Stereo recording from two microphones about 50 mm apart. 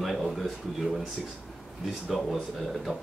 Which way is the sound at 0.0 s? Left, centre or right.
Centre.